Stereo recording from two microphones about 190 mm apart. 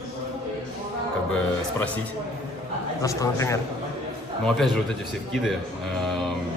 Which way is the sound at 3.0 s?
15° left (ahead or behind).